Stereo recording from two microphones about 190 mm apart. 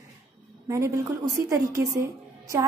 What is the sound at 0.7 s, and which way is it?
A woman's voice, 15° right (ahead or behind).